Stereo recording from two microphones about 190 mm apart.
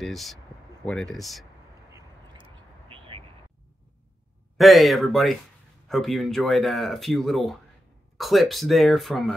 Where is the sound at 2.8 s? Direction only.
30° right (ahead or behind).